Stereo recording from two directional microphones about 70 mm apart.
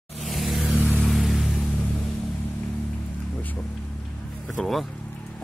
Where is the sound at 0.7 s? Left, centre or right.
Right.